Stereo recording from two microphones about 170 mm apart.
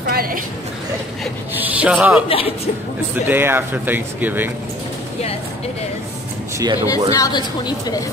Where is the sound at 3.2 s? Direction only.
10° right (ahead or behind).